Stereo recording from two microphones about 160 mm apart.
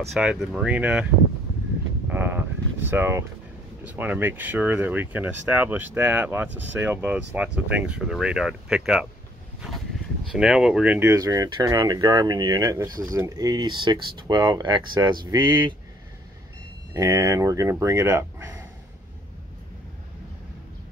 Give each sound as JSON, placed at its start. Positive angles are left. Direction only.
{"t": 0.0, "sound": "speech", "side_deg": 0}
{"t": 2.0, "sound": "a sound", "side_deg": -15}
{"t": 3.8, "sound": "speech", "side_deg": -10}
{"t": 10.3, "sound": "speech", "side_deg": -5}
{"t": 11.1, "sound": "speech", "side_deg": -20}
{"t": 16.9, "sound": "speech", "side_deg": -20}